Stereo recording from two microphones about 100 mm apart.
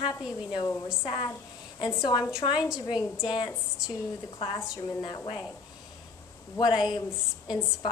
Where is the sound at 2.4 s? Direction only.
50° left (ahead or behind).